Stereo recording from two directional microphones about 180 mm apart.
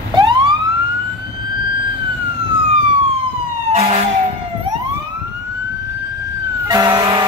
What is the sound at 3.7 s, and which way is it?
Emergency vehicle, 35° right (ahead or behind).